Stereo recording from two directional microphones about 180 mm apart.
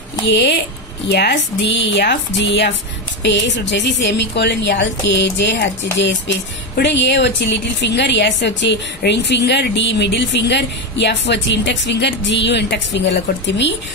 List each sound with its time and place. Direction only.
0.3 s a woman's voice: 70° left (ahead or behind)